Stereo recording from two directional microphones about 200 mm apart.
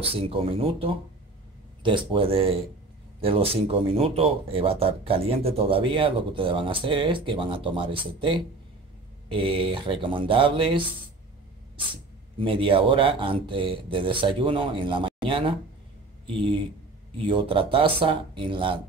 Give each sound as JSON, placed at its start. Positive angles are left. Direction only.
{"t": 0.0, "sound": "speech", "side_deg": -30}
{"t": 12.4, "sound": "speech", "side_deg": -25}